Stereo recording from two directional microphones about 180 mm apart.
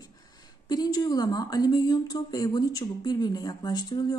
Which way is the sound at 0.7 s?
20° left (ahead or behind).